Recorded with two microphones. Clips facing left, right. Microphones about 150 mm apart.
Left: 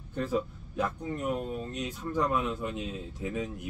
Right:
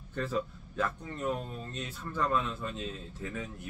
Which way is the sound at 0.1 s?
15° left (ahead or behind).